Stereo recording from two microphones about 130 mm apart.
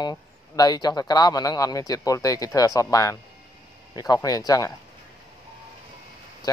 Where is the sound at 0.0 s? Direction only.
30° left (ahead or behind).